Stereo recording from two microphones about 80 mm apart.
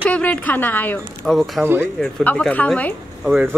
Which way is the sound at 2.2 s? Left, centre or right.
Centre.